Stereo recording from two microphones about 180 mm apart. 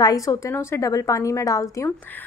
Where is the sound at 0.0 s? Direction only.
20° left (ahead or behind).